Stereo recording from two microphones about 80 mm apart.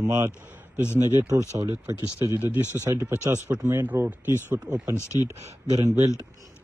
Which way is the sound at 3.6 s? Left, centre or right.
Right.